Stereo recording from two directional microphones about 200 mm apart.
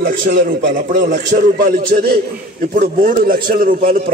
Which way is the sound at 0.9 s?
40° right (ahead or behind).